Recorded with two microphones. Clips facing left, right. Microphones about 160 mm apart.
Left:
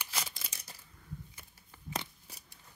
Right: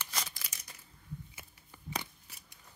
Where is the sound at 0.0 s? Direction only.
10° left (ahead or behind).